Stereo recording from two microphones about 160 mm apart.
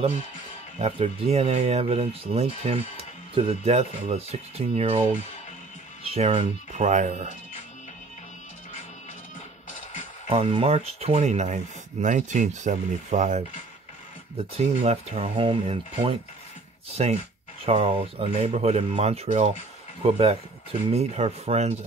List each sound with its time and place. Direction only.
0.7 s speech: 40° right (ahead or behind)
6.0 s speech: 40° right (ahead or behind)
10.3 s speech: 35° right (ahead or behind)
14.6 s speech: 45° right (ahead or behind)